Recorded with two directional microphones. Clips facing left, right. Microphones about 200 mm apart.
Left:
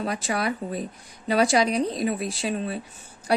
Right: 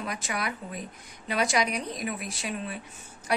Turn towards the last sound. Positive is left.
turn(degrees=35)  # may be behind; listen again after turning